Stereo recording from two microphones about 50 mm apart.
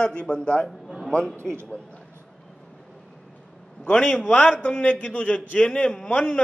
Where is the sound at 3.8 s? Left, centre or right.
Left.